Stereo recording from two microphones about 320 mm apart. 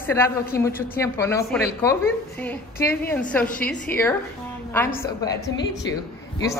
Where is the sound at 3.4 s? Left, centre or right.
Left.